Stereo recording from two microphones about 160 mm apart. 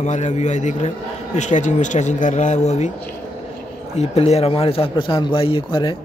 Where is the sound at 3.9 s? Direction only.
40° left (ahead or behind).